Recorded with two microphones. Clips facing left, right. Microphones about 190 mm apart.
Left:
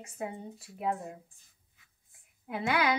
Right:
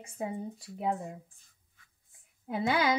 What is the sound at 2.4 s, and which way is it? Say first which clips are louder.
Speech: right 2 dB; 30° right (ahead or behind).